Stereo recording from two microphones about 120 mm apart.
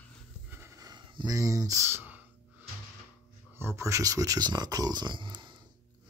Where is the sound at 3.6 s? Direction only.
20° right (ahead or behind); by 5.6 s 40° right (ahead or behind).